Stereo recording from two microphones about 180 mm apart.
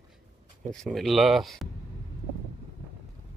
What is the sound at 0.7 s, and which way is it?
Speech, 5° left (ahead or behind).